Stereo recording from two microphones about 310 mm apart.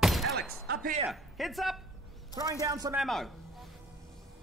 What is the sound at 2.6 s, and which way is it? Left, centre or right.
Speech, centre.